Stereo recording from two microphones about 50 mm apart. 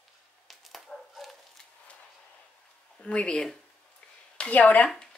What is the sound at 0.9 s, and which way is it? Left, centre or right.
Bow-wow, centre.